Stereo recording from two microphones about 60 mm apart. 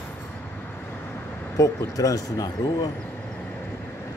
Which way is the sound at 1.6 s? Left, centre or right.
Left.